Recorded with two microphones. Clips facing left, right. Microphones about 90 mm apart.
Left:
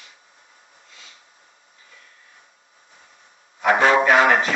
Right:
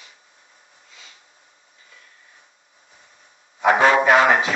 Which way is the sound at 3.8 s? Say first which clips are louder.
Even; 10° right (ahead or behind).